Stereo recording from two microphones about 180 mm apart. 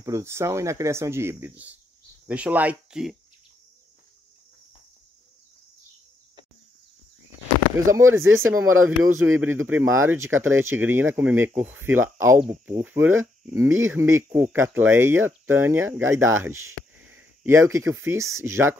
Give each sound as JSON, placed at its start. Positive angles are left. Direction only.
{"t": 0.0, "sound": "speech", "side_deg": -15}
{"t": 7.7, "sound": "speech", "side_deg": -15}
{"t": 8.2, "sound": "speech", "side_deg": -90}
{"t": 8.5, "sound": "speech", "side_deg": -10}